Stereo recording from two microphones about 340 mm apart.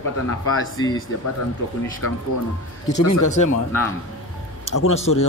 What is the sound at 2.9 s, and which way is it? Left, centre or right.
Speech, left.